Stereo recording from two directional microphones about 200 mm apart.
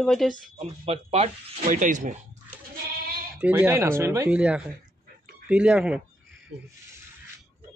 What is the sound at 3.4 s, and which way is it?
A man's voice, 10° right (ahead or behind).